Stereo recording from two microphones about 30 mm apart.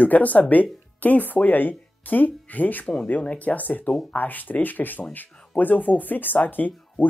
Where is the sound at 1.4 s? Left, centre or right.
Left.